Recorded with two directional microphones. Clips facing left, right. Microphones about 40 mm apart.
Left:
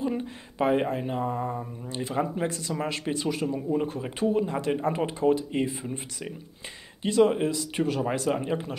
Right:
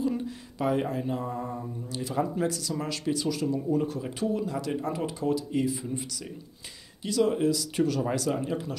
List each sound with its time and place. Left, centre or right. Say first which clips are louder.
0.0 s speech: even; left